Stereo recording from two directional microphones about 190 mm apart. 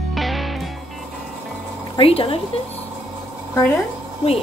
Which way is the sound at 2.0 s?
30° left (ahead or behind).